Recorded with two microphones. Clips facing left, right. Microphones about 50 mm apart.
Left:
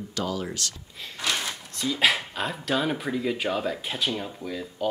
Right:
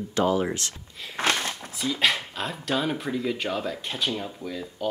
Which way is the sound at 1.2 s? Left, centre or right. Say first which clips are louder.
Right 5 dB; right.